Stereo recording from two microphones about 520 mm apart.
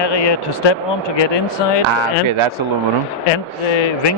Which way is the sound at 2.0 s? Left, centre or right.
Right.